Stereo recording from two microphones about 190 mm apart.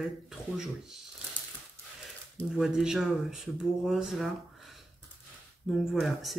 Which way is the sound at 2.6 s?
5° right (ahead or behind).